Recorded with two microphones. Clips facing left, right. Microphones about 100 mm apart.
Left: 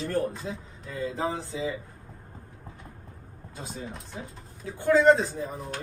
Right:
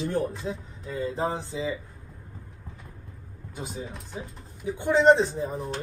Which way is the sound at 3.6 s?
5° right (ahead or behind).